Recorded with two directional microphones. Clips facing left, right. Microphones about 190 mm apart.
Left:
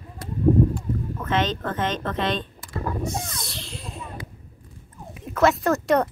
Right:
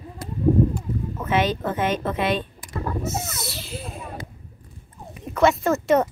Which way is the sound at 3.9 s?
55° right (ahead or behind).